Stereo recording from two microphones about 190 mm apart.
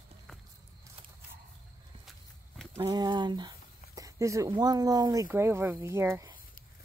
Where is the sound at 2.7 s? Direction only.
25° right (ahead or behind).